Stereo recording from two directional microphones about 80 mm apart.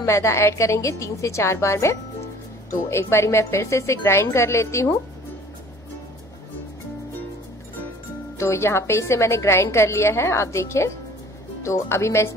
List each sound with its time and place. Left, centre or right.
0.0 s a woman's voice: left
8.4 s a woman's voice: left